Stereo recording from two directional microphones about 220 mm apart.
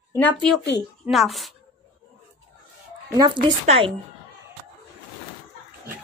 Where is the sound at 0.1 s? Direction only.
5° left (ahead or behind).